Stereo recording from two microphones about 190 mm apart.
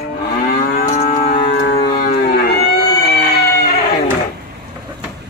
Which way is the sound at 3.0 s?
55° left (ahead or behind).